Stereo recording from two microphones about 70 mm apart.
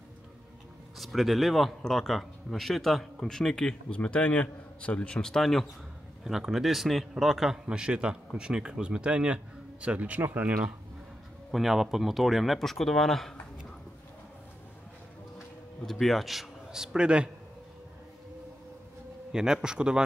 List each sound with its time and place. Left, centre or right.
0.9 s a man's voice: centre; by 10.7 s right
11.5 s a man's voice: centre
15.8 s a man's voice: centre
19.3 s a man's voice: centre